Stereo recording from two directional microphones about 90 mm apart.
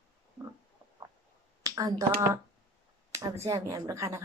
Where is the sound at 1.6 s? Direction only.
40° right (ahead or behind).